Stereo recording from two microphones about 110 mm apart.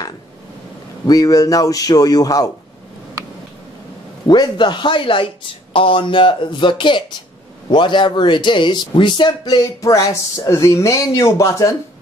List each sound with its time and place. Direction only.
1.0 s speech: 35° left (ahead or behind)
4.3 s speech: 45° left (ahead or behind)